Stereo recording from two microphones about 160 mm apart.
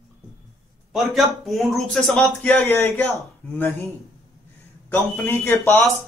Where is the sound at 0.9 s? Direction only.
Centre (ahead or behind).